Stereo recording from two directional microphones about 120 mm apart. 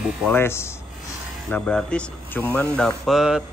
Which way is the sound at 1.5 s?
10° left (ahead or behind).